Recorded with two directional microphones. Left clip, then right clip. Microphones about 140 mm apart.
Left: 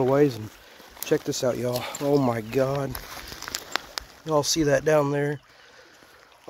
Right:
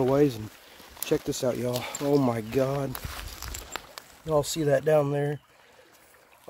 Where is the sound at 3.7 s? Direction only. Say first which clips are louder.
Left 9 dB; 85° left.